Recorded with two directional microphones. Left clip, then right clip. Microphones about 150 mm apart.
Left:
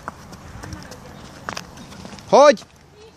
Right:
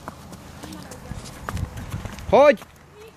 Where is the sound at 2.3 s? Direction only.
20° left (ahead or behind).